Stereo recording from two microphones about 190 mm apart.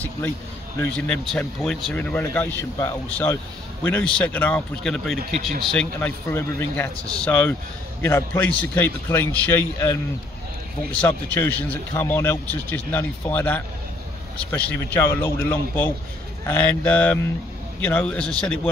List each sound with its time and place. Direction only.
0.7 s speech: 5° left (ahead or behind)